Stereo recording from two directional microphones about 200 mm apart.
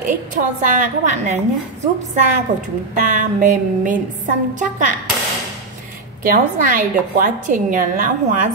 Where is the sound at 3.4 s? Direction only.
40° right (ahead or behind).